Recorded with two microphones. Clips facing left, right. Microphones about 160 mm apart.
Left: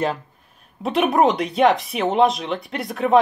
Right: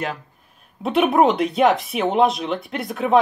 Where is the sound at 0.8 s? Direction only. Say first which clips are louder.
Right 1 dB; centre (ahead or behind).